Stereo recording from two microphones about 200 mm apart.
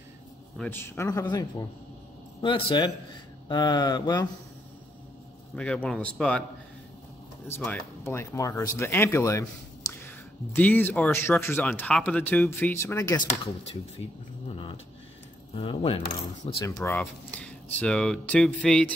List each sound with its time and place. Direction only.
0.6 s speech: 10° left (ahead or behind)
5.6 s speech: 5° left (ahead or behind)
7.4 s speech: 10° left (ahead or behind)
14.5 s a sound: 25° left (ahead or behind)
15.5 s speech: 25° left (ahead or behind)
16.6 s speech: 15° left (ahead or behind)